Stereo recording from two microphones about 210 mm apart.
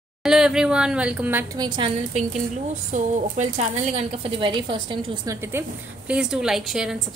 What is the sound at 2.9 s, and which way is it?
A woman's voice, 35° right (ahead or behind).